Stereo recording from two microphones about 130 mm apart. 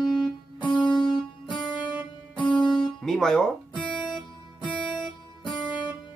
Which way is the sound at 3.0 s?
5° left (ahead or behind).